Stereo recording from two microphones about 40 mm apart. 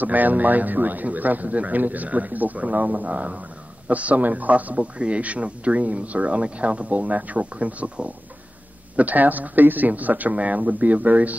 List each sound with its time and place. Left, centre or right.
0.0 s a man's voice: right